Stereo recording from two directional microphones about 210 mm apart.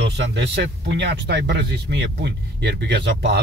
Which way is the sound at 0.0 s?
55° right (ahead or behind).